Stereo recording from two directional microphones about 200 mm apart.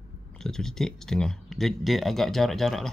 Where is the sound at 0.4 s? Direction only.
Centre (ahead or behind).